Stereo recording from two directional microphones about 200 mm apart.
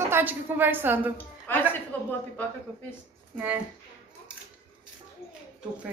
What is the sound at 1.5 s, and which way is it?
Speech, 10° left (ahead or behind).